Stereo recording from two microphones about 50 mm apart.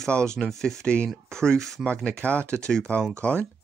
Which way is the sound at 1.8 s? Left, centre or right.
Left.